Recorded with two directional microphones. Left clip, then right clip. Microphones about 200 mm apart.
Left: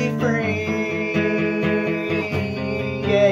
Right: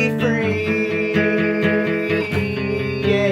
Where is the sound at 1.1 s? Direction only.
45° right (ahead or behind).